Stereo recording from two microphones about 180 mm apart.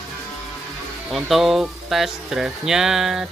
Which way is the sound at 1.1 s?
Centre (ahead or behind).